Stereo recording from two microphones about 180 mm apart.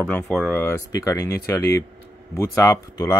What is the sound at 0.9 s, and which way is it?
Speech, 20° left (ahead or behind).